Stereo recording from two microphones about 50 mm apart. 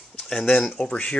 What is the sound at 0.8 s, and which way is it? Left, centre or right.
Speech, left.